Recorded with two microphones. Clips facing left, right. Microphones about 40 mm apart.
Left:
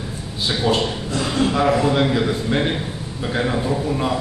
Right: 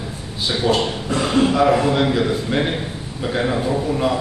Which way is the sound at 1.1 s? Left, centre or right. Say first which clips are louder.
Right 5 dB; right.